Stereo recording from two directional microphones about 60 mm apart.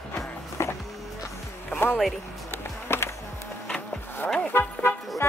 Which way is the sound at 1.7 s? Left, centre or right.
Left.